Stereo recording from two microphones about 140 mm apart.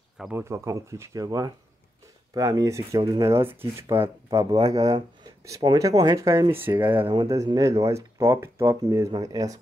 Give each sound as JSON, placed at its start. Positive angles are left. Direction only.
{"t": 0.3, "sound": "speech", "side_deg": -20}
{"t": 7.4, "sound": "speech", "side_deg": -25}